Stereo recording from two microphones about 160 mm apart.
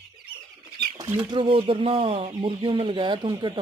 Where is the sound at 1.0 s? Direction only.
15° right (ahead or behind).